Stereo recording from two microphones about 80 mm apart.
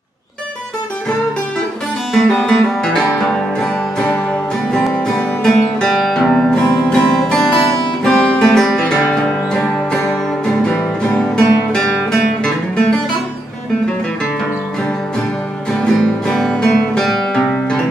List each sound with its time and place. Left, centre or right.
2.1 s music: centre
4.9 s music: centre
10.7 s music: centre
15.8 s music: centre